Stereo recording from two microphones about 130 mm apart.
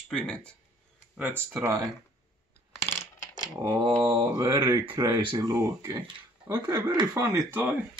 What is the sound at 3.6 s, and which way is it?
Mantra, 35° right (ahead or behind).